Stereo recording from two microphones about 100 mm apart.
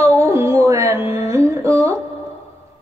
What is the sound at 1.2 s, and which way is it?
Humming, 30° right (ahead or behind).